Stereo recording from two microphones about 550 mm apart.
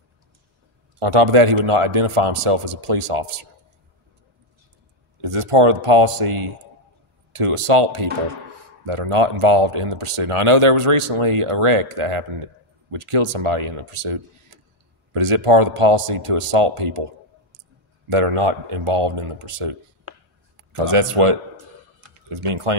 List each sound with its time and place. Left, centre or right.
0.9 s speech: right
5.2 s speech: right
18.1 s speech: right